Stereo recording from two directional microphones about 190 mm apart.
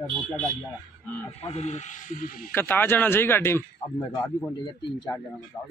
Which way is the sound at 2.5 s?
10° left (ahead or behind).